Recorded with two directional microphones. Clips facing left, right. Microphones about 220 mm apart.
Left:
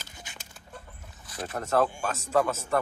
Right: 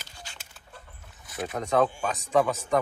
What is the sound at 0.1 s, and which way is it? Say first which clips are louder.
Chicken: even; 20° left (ahead or behind).